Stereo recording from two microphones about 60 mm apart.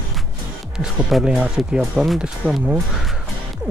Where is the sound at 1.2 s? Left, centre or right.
Centre.